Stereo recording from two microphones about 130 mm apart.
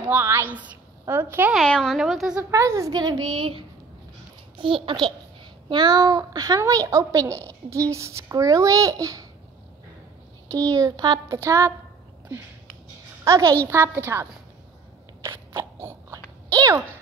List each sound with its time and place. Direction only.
0.1 s a woman's voice: 15° right (ahead or behind)
1.5 s speech: 5° left (ahead or behind)
2.5 s a child's voice: 25° right (ahead or behind)
4.6 s a child's voice: 40° right (ahead or behind)
10.7 s a child's voice: 30° right (ahead or behind)
11.3 s a child's voice: 20° right (ahead or behind)
13.2 s a child's voice: 25° right (ahead or behind)
15.2 s biting: 20° right (ahead or behind)
16.4 s a sound: 25° right (ahead or behind)